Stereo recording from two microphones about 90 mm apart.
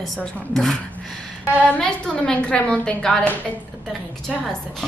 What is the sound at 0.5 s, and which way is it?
Music, 5° left (ahead or behind).